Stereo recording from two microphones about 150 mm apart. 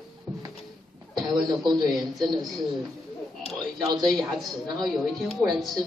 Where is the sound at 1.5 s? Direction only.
30° right (ahead or behind).